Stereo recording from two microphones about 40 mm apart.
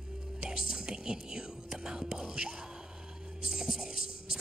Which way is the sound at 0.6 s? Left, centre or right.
Centre.